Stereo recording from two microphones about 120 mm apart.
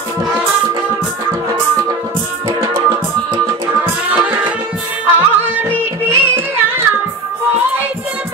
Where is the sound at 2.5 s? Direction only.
40° right (ahead or behind).